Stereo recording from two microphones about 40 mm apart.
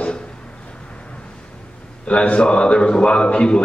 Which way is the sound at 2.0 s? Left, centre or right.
Left.